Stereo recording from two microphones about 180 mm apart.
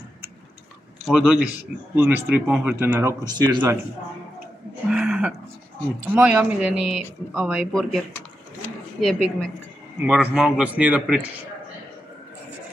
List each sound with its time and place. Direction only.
1.0 s a man's voice: 5° right (ahead or behind); by 3.7 s 20° right (ahead or behind)
4.8 s speech: 5° right (ahead or behind)
10.0 s a man's voice: 5° right (ahead or behind)